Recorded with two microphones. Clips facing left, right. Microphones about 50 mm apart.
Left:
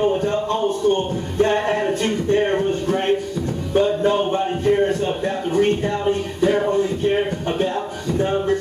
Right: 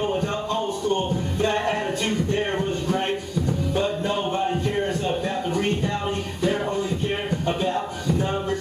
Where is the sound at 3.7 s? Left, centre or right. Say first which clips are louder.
Left 9 dB; left.